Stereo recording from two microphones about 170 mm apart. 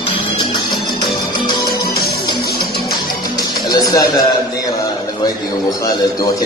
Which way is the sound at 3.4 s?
20° left (ahead or behind).